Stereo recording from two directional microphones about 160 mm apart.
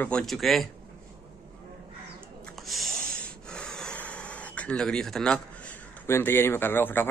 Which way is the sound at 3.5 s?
5° left (ahead or behind).